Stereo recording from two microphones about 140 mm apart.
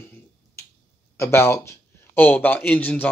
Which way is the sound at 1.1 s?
20° left (ahead or behind).